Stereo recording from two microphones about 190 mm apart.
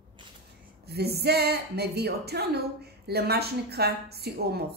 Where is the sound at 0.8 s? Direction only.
55° right (ahead or behind).